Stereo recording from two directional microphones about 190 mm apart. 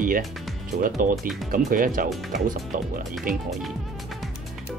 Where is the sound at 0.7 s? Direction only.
45° right (ahead or behind).